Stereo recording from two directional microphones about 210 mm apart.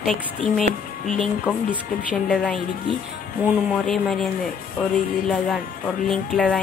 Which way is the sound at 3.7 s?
Centre (ahead or behind).